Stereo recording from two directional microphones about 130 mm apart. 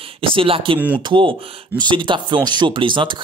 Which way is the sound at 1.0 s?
40° right (ahead or behind).